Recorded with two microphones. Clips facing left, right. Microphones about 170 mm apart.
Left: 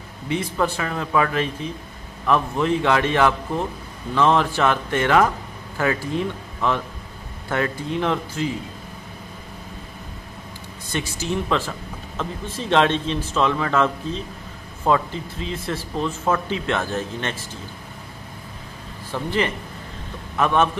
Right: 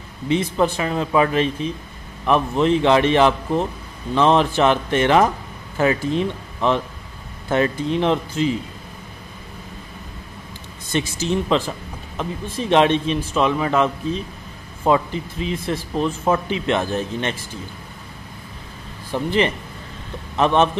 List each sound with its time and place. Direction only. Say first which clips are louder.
0.3 s speech: right 4 dB; 20° right (ahead or behind)
10.9 s speech: right 4 dB; 20° right (ahead or behind)
19.1 s speech: right 4 dB; 20° right (ahead or behind)